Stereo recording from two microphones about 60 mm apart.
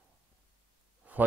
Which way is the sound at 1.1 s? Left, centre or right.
Right.